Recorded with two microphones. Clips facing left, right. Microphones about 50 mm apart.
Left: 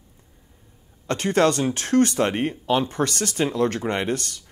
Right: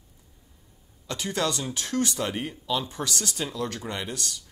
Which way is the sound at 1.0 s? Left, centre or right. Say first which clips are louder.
Left 9 dB; left.